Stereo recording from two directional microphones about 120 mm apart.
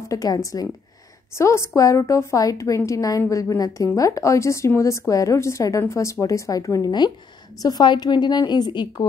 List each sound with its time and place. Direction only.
0.1 s a woman's voice: 30° left (ahead or behind)